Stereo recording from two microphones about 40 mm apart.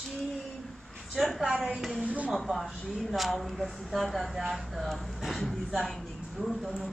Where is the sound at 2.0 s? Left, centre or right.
Right.